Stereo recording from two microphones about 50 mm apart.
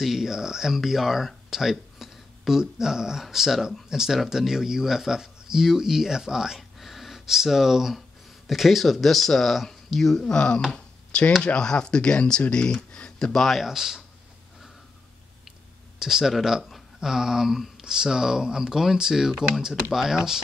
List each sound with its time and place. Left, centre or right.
0.0 s speech: centre
10.3 s speech: left
10.7 s a sound: left
11.4 s speech: centre
16.0 s speech: centre